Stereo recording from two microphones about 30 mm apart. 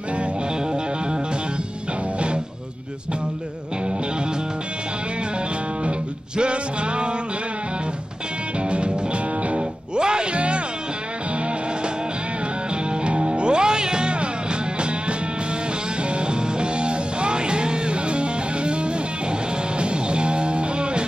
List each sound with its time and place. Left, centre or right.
2.1 s music: right
6.3 s music: right
8.6 s music: right
9.9 s music: right
10.3 s music: right
12.9 s music: right